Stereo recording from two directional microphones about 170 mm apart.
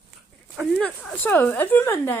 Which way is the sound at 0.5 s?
Centre (ahead or behind).